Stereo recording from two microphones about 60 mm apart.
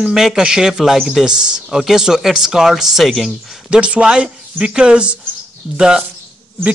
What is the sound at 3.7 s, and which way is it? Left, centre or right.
Speech, centre.